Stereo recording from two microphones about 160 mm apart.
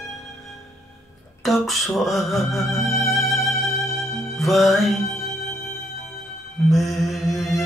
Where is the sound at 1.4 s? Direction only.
Centre (ahead or behind).